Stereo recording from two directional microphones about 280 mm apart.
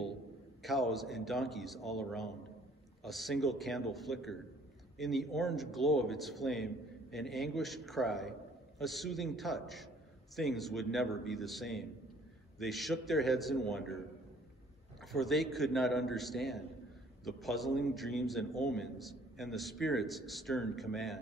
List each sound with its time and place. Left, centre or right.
0.6 s a man's voice: centre
15.1 s a man's voice: centre